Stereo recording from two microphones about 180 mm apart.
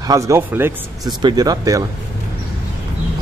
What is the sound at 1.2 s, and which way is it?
Speech, 25° right (ahead or behind).